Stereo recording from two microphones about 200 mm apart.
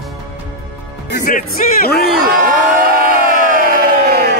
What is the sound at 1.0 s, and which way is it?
Speech, 50° left (ahead or behind).